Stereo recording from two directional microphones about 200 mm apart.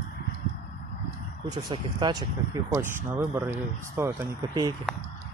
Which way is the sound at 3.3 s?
15° right (ahead or behind).